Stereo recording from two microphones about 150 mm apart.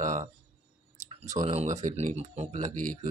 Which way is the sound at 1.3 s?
45° right (ahead or behind).